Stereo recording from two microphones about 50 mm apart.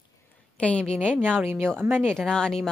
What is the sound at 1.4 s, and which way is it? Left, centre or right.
Speech, right.